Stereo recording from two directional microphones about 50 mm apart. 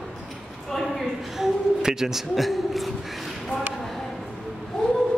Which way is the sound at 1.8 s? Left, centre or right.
Centre.